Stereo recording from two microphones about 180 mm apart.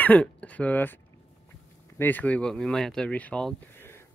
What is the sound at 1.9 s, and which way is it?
Speech, 10° left (ahead or behind).